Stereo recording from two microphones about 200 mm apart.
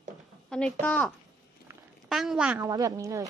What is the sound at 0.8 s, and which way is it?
A woman's voice, 5° left (ahead or behind).